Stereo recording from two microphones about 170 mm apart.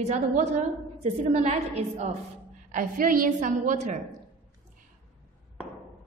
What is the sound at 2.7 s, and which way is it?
A woman's voice, 55° right (ahead or behind).